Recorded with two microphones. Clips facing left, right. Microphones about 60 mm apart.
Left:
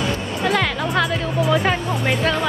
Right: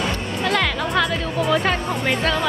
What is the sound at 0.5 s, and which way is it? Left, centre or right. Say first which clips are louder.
A woman's voice: left 1 dB; centre.